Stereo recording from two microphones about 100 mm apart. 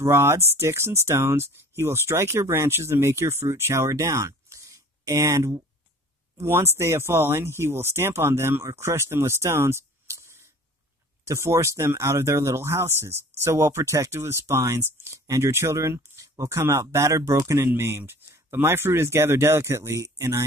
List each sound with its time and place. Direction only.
0.0 s speech: 25° right (ahead or behind)
6.3 s speech: 25° right (ahead or behind)